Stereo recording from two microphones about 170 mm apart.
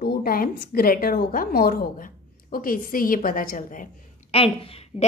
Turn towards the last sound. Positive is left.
turn(degrees=35)  # may be behind; listen again after turning